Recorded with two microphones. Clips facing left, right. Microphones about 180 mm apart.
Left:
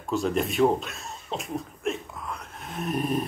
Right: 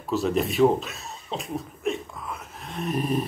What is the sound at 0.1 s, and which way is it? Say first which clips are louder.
Speech: right 2 dB; centre (ahead or behind).